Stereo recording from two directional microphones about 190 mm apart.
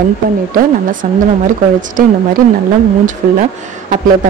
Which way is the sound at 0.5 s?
45° right (ahead or behind).